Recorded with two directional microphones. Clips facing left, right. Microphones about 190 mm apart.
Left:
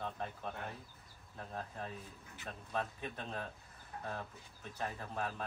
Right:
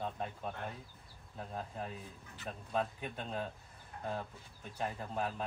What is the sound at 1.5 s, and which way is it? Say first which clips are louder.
Speech: right 2 dB; 15° right (ahead or behind).